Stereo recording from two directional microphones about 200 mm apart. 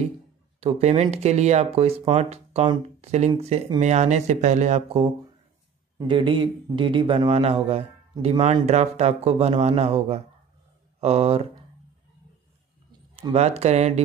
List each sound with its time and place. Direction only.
0.6 s speech: 30° right (ahead or behind)
13.1 s speech: 30° right (ahead or behind)